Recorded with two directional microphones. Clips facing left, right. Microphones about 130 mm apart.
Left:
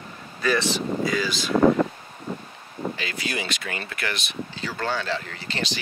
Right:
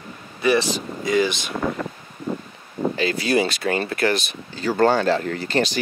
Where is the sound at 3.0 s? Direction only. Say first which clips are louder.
Right 10 dB; 35° right (ahead or behind).